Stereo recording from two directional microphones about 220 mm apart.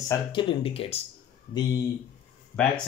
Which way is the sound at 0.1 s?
20° left (ahead or behind).